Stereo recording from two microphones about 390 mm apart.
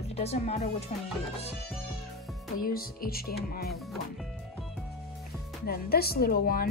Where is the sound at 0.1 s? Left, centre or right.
Centre.